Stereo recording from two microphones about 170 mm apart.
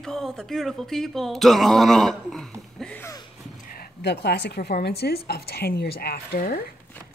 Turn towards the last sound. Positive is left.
turn(degrees=60)  # may be behind; listen again after turning